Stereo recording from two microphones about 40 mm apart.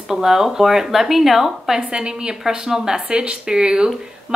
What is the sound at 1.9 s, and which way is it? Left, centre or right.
Speech, right.